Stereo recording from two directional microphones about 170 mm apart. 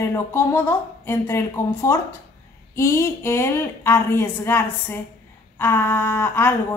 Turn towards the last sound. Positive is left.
turn(degrees=15)  # may be behind; listen again after turning